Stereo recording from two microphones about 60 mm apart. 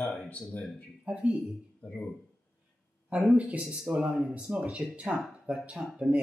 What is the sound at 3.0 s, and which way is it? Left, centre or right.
Speech, centre.